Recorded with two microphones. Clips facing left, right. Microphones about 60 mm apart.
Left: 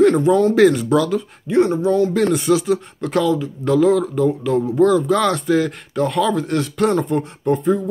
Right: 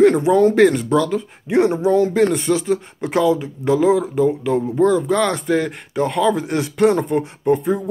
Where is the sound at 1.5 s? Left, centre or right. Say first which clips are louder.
Even; centre.